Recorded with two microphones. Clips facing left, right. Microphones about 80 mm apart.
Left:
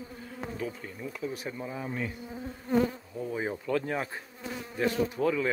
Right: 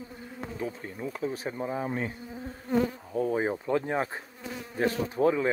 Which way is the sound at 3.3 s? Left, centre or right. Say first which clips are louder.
Right 1 dB; right.